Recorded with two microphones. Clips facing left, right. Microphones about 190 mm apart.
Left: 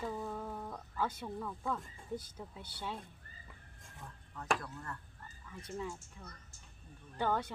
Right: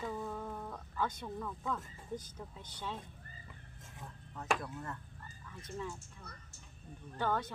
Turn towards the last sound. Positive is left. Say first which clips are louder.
# left 1 dB
turn(degrees=10)  # may be behind; listen again after turning